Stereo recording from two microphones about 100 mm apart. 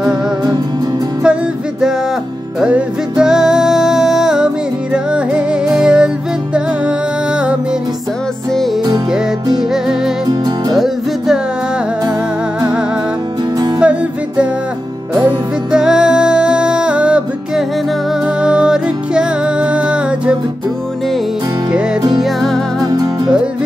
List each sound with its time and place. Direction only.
0.0 s music: 45° right (ahead or behind)
1.2 s music: 10° right (ahead or behind)
9.6 s music: 5° right (ahead or behind)
13.7 s music: 10° right (ahead or behind)
15.7 s music: 5° right (ahead or behind)
22.2 s music: 5° left (ahead or behind)
22.8 s music: 40° right (ahead or behind)